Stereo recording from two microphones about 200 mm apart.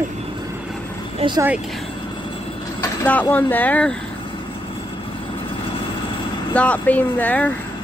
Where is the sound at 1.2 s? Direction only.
30° right (ahead or behind).